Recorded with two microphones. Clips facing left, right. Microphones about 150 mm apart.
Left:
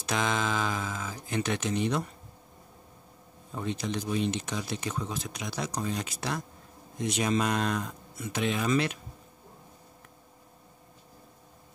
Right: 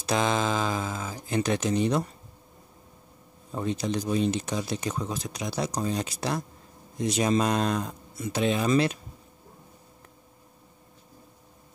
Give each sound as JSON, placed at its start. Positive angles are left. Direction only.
{"t": 0.0, "sound": "speech", "side_deg": -35}
{"t": 3.5, "sound": "speech", "side_deg": -35}